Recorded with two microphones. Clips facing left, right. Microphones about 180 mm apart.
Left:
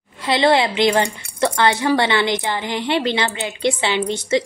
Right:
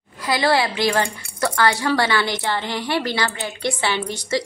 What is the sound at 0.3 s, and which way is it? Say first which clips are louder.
A woman's voice: left 3 dB; 25° left (ahead or behind).